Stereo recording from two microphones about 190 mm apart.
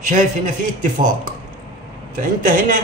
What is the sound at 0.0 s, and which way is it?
A man's voice, 40° right (ahead or behind).